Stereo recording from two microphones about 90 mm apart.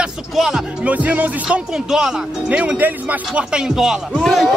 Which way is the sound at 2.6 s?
15° right (ahead or behind).